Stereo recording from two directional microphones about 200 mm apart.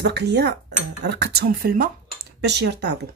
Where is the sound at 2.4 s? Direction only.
60° right (ahead or behind).